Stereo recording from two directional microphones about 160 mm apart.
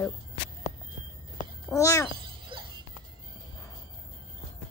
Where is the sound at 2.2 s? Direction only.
30° right (ahead or behind).